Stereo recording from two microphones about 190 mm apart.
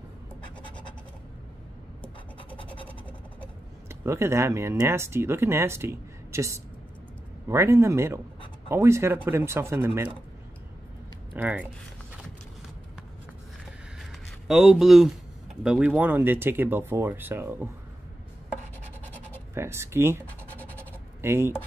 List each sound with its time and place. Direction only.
0.7 s scratch: 25° left (ahead or behind)
2.5 s scratch: 25° left (ahead or behind)
3.9 s speech: 15° right (ahead or behind)
11.3 s speech: 10° right (ahead or behind)
14.5 s speech: centre (ahead or behind)
19.5 s speech: 15° right (ahead or behind)
20.5 s a sound: 10° left (ahead or behind)
21.2 s speech: 10° right (ahead or behind)